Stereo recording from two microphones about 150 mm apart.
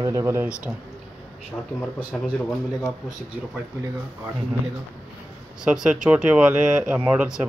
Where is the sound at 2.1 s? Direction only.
5° left (ahead or behind).